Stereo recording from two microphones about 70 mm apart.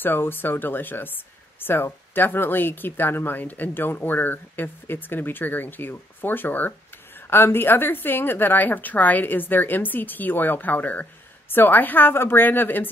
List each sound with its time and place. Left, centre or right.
0.0 s speech: left